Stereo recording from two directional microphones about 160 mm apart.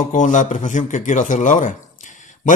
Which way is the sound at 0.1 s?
50° left (ahead or behind).